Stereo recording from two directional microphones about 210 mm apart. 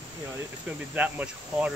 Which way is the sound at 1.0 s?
5° right (ahead or behind).